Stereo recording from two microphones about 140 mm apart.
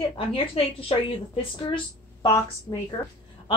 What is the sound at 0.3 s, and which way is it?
Speech, 40° left (ahead or behind).